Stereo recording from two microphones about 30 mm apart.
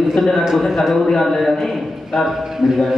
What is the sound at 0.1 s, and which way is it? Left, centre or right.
A man's voice, centre.